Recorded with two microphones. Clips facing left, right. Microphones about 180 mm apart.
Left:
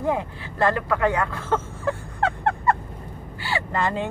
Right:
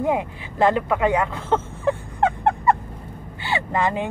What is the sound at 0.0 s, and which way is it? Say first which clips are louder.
Speech: right 2 dB; 15° right (ahead or behind).